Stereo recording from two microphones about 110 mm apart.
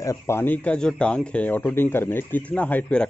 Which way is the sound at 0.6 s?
10° left (ahead or behind).